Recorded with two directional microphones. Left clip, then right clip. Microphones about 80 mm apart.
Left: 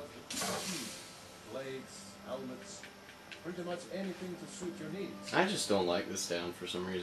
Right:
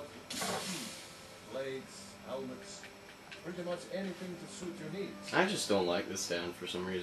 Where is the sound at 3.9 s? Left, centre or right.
Centre.